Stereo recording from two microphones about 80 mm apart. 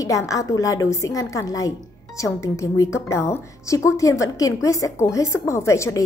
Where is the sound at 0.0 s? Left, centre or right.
Left.